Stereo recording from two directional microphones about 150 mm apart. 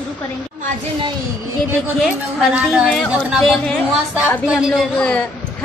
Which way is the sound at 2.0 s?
Centre (ahead or behind).